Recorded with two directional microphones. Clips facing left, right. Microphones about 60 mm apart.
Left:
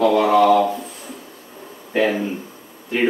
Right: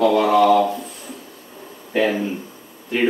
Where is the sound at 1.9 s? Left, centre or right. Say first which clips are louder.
Even; centre.